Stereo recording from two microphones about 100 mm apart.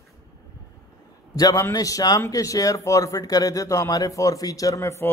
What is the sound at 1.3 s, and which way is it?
A man's voice, 40° left (ahead or behind).